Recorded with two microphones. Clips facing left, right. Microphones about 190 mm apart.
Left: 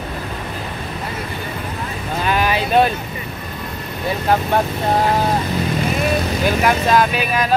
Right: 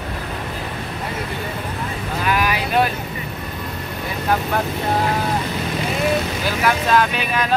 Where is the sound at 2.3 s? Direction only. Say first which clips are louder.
Left 3 dB; 25° left (ahead or behind).